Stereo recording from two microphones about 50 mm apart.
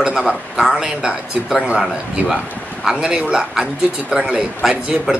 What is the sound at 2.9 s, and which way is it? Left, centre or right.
Speech, centre.